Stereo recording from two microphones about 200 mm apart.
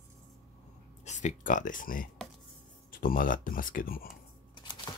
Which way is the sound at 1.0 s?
35° left (ahead or behind).